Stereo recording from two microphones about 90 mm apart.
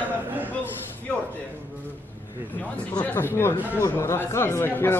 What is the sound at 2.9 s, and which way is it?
Speech, 25° left (ahead or behind).